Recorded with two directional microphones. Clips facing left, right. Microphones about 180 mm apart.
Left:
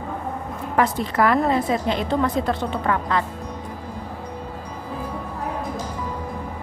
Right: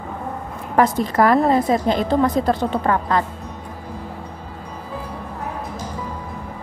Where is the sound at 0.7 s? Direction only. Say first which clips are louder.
Right 4 dB; 40° right (ahead or behind).